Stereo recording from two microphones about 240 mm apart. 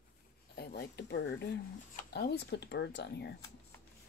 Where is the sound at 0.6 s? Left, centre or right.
Left.